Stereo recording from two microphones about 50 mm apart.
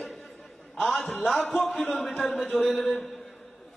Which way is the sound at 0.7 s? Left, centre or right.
Centre.